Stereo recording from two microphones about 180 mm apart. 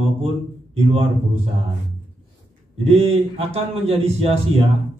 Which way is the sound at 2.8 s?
35° right (ahead or behind).